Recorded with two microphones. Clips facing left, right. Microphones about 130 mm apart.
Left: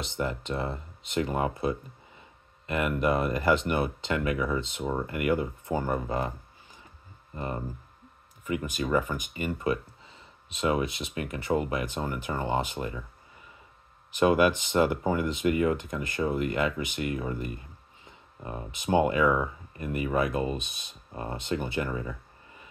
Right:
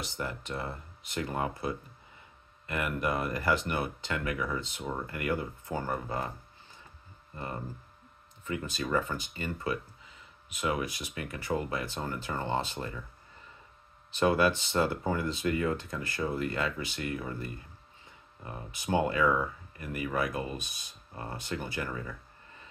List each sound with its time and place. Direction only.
0.0 s speech: 20° left (ahead or behind)
7.3 s speech: 20° left (ahead or behind)
10.0 s speech: 30° left (ahead or behind)
14.1 s speech: 15° left (ahead or behind)